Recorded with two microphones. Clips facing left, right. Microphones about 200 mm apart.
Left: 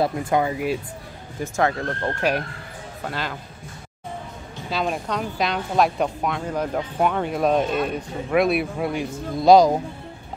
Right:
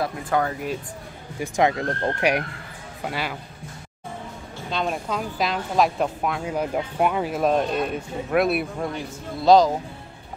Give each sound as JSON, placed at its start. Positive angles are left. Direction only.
{"t": 0.0, "sound": "speech", "side_deg": 25}
{"t": 0.4, "sound": "speech", "side_deg": 10}
{"t": 1.4, "sound": "a man's voice", "side_deg": -15}
{"t": 4.6, "sound": "a woman's voice", "side_deg": 0}